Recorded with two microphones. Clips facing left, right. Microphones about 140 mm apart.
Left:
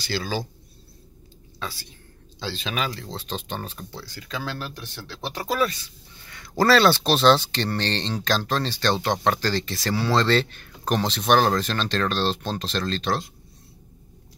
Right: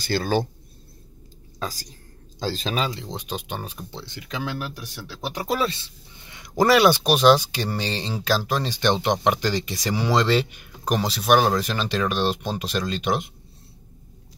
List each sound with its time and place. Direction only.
0.0 s speech: 55° right (ahead or behind)
1.6 s speech: 40° right (ahead or behind); by 3.8 s 10° right (ahead or behind)
3.9 s speech: 20° right (ahead or behind)
5.5 s speech: 25° right (ahead or behind)